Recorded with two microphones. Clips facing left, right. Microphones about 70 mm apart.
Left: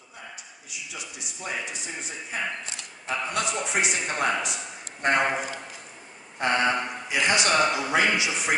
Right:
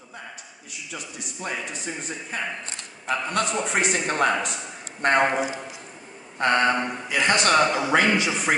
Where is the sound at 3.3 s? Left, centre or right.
Right.